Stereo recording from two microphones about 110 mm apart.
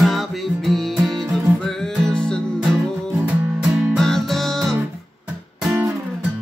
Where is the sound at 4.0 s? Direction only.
5° left (ahead or behind).